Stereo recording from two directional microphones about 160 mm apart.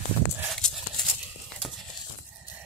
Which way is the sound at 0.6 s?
5° left (ahead or behind).